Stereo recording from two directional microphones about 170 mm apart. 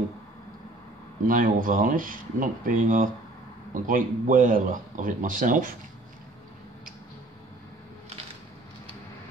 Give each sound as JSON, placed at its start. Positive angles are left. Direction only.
{"t": 1.2, "sound": "a man's voice", "side_deg": -50}